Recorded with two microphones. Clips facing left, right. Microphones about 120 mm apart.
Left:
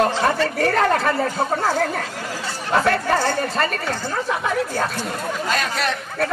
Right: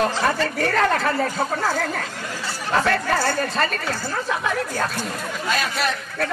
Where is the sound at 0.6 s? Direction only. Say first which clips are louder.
Left 2 dB; 35° left (ahead or behind).